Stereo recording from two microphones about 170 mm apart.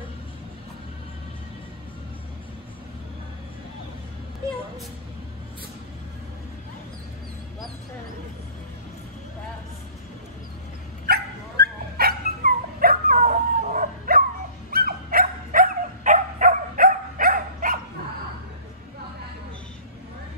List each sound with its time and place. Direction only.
11.1 s dog: 70° right (ahead or behind)